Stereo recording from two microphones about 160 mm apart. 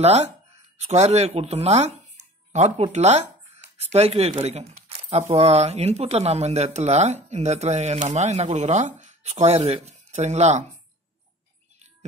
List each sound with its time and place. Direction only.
0.0 s speech: 40° right (ahead or behind)